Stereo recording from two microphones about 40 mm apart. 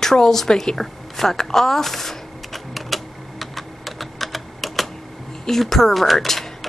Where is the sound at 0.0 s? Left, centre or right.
Centre.